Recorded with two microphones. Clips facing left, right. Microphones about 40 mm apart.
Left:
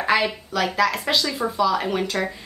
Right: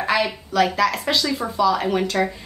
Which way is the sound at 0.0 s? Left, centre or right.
Centre.